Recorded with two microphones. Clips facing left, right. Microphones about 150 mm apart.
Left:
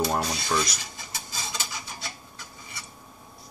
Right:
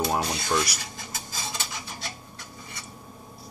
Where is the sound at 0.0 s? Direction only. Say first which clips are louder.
Even; centre (ahead or behind).